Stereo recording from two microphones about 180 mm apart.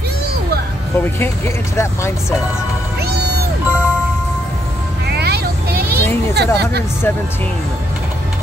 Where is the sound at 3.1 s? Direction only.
65° right (ahead or behind).